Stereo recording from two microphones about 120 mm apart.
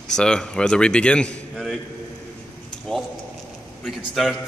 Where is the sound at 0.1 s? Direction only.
5° left (ahead or behind).